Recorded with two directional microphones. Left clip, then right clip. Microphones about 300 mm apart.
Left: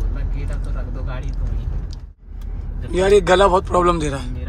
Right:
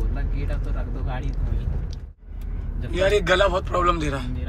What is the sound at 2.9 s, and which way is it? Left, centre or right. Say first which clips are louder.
Speech: left 6 dB; centre.